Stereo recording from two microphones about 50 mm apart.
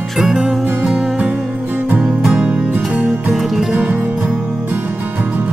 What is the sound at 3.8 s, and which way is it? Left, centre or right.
Music, right.